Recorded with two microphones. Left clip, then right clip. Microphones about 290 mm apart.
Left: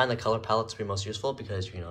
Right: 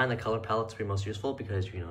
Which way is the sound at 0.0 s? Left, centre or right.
Centre.